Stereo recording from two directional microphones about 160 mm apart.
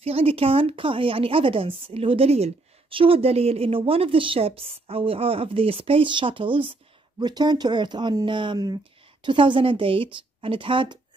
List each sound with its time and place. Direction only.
0.0 s speech: 35° right (ahead or behind)